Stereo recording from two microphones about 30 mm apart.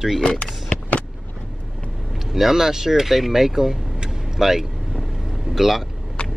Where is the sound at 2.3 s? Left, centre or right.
Centre.